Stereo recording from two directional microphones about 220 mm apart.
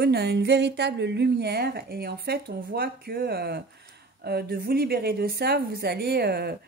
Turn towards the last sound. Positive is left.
turn(degrees=-45)  # may be behind; listen again after turning